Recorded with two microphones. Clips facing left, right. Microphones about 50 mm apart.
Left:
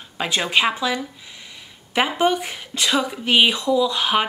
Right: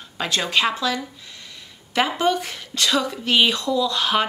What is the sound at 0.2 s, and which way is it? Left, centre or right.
A woman's voice, centre.